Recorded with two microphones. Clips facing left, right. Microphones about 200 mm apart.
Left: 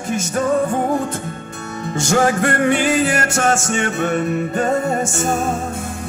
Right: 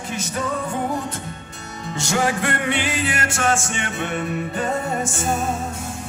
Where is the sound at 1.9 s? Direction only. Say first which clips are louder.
Left 5 dB; 45° left (ahead or behind).